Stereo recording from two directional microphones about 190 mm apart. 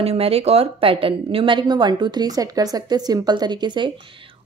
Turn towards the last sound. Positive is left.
turn(degrees=-25)  # may be behind; listen again after turning